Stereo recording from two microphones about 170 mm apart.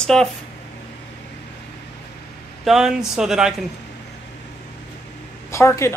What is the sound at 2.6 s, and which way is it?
Speech, 5° right (ahead or behind).